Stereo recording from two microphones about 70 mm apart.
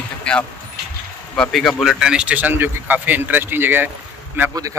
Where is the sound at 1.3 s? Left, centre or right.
Centre; by 4.5 s right.